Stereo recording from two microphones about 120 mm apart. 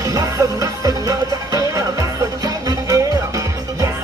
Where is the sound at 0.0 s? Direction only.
30° right (ahead or behind).